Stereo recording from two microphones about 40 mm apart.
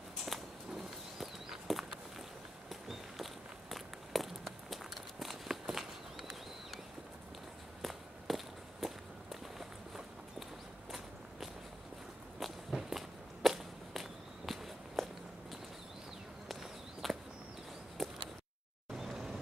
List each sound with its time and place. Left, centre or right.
0.2 s walk: centre
7.8 s walk: centre
12.4 s walk: centre
17.0 s walk: centre
18.9 s vehicle: centre